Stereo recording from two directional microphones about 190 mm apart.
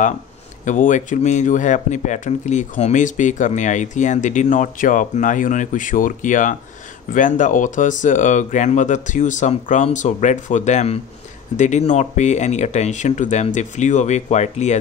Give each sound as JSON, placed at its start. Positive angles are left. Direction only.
{"t": 0.7, "sound": "speech", "side_deg": 40}